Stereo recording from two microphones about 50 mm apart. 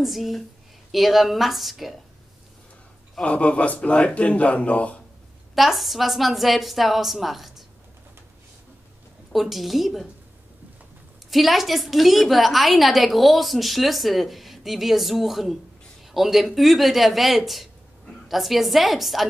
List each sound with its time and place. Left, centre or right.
0.0 s a woman's voice: centre
3.2 s speech: left
5.5 s a woman's voice: centre
9.3 s a woman's voice: centre
11.2 s a woman's voice: centre